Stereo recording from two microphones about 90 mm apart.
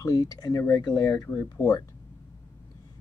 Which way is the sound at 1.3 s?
25° left (ahead or behind).